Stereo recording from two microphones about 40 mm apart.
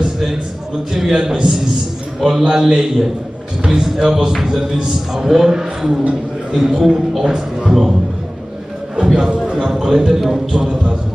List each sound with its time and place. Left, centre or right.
0.9 s a man's voice: centre
3.6 s a man's voice: right
8.9 s a man's voice: right